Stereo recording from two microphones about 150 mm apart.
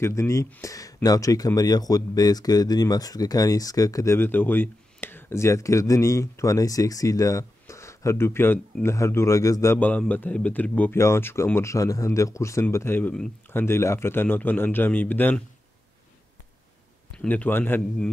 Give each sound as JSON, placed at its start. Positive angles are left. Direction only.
{"t": 0.0, "sound": "a man's voice", "side_deg": 20}
{"t": 17.2, "sound": "a man's voice", "side_deg": 10}